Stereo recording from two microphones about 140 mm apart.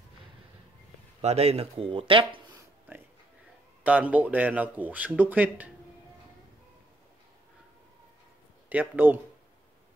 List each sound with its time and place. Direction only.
1.2 s speech: 50° right (ahead or behind)
3.8 s speech: 10° right (ahead or behind)
8.6 s speech: 10° right (ahead or behind)